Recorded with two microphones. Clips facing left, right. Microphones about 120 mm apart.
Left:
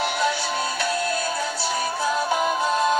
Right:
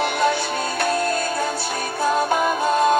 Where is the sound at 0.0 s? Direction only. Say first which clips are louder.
Right 3 dB; 50° right (ahead or behind).